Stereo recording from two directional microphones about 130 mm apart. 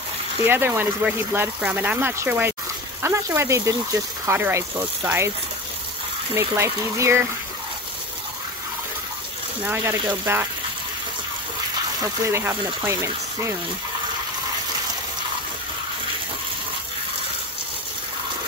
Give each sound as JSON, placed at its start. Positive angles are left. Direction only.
{"t": 0.5, "sound": "speech", "side_deg": -15}
{"t": 6.3, "sound": "speech", "side_deg": -20}
{"t": 10.2, "sound": "speech", "side_deg": -15}
{"t": 12.0, "sound": "speech", "side_deg": -20}